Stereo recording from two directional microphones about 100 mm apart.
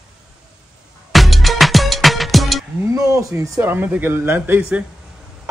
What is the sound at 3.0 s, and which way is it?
Speech, 30° right (ahead or behind).